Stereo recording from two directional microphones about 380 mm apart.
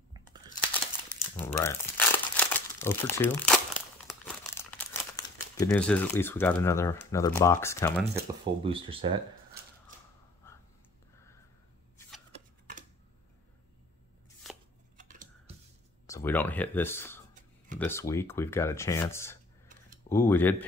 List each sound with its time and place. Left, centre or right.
1.0 s crumpling: centre
8.0 s speech: right
8.6 s speech: centre
15.0 s scissors: right
16.1 s speech: centre